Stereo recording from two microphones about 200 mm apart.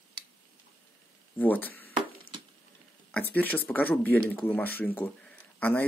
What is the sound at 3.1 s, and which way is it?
Speech, 10° left (ahead or behind).